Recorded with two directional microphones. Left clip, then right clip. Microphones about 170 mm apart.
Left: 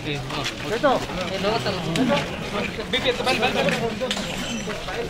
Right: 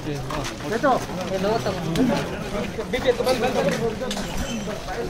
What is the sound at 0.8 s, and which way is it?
Speech, 60° right (ahead or behind).